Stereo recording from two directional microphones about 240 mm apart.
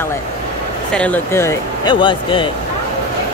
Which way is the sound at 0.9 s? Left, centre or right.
Centre.